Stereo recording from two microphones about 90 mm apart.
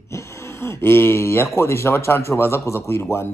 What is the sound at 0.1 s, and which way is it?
Speech, 30° left (ahead or behind).